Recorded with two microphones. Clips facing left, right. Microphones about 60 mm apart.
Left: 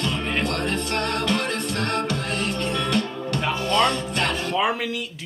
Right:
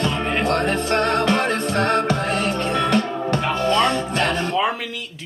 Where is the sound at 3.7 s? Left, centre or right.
Centre.